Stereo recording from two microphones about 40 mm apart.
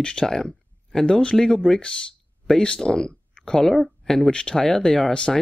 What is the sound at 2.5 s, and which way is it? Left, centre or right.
Speech, centre.